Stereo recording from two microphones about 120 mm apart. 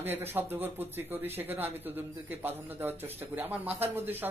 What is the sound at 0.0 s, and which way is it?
A man's voice, 15° right (ahead or behind).